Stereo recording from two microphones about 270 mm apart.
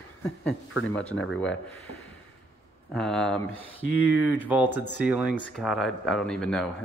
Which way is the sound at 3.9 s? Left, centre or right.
Left.